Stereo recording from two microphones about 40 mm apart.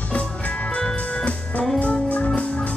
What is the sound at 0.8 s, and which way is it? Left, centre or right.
Music, centre.